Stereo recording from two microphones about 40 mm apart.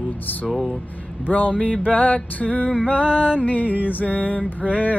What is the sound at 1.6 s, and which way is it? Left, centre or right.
Music, left.